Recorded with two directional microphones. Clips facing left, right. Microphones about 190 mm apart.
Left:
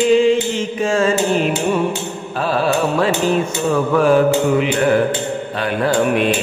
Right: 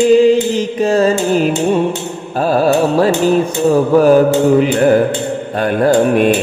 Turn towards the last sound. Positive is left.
turn(degrees=-45)  # may be behind; listen again after turning